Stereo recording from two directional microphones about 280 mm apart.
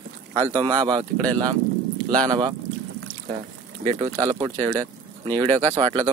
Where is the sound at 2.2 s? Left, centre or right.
Centre.